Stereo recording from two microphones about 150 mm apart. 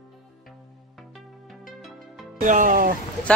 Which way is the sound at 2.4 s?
60° right (ahead or behind).